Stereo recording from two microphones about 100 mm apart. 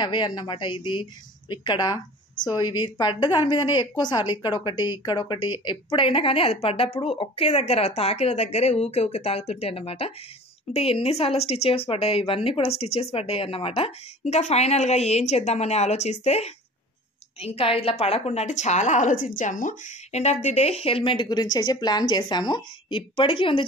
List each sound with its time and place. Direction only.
0.0 s a woman's voice: 50° left (ahead or behind); by 16.5 s 90° left
17.6 s a woman's voice: 75° left (ahead or behind)
20.1 s a woman's voice: 90° left; by 23.6 s 60° left (ahead or behind)